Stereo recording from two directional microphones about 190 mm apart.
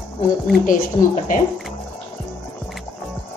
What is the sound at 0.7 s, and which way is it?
Speech, 40° left (ahead or behind).